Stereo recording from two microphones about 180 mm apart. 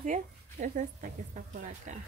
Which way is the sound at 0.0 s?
45° right (ahead or behind).